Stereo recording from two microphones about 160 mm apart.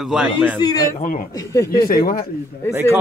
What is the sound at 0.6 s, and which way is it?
Speech, 25° left (ahead or behind).